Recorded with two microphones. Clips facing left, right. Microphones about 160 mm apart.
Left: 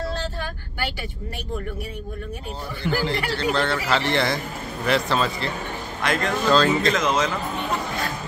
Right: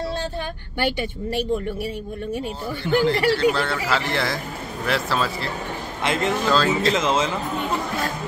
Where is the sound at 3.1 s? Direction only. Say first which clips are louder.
Right 6 dB; 5° right (ahead or behind).